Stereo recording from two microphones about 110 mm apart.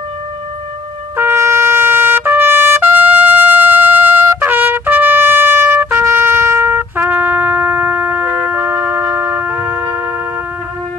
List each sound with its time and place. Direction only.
1.1 s trumpet: 20° right (ahead or behind)